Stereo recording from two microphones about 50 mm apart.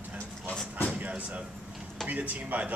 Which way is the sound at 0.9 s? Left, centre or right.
Right.